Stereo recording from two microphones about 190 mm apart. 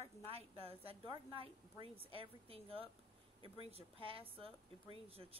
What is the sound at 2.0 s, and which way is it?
Speech, 30° right (ahead or behind).